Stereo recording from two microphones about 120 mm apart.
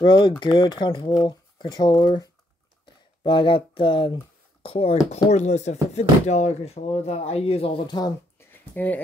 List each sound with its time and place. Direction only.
0.0 s speech: 40° left (ahead or behind)
3.3 s speech: 45° left (ahead or behind)
4.6 s speech: 55° left (ahead or behind)
5.3 s speech: 70° left (ahead or behind); by 7.9 s 50° left (ahead or behind)
8.4 s a sound: 15° left (ahead or behind)